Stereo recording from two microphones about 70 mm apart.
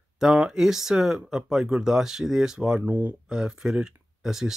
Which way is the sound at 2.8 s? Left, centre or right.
Right.